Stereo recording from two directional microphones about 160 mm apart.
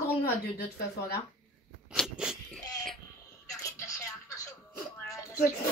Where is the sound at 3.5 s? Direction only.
20° left (ahead or behind).